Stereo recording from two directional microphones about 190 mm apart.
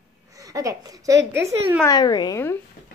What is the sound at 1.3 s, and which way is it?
Speech, 15° right (ahead or behind).